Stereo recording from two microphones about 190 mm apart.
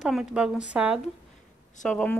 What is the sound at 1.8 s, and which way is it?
Speech, 5° left (ahead or behind).